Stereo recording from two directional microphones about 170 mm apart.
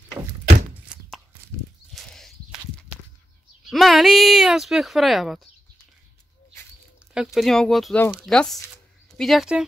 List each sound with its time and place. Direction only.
0.9 s chopping: 5° right (ahead or behind)
2.0 s walk: centre (ahead or behind)
3.7 s speech: centre (ahead or behind)
7.3 s speech: centre (ahead or behind)